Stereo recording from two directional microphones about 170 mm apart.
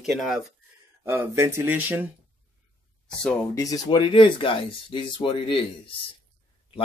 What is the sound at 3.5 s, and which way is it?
Speech, 20° left (ahead or behind).